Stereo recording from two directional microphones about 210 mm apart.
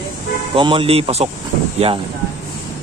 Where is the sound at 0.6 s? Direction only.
25° right (ahead or behind).